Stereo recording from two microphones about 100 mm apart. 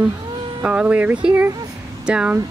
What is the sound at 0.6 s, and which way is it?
Speech, 10° right (ahead or behind).